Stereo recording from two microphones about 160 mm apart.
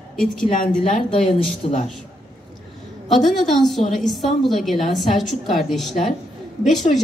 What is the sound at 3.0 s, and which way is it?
A woman's voice, centre (ahead or behind).